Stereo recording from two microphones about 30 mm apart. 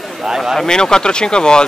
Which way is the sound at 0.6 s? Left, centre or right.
Left.